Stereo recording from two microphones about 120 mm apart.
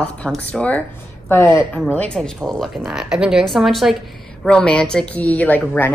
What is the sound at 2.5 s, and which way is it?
A woman's voice, centre (ahead or behind).